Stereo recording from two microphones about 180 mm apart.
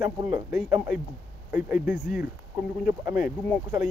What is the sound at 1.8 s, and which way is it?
Speech, 50° left (ahead or behind).